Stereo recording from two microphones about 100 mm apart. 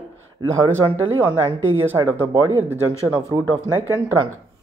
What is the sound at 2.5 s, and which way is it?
Speech, 20° right (ahead or behind).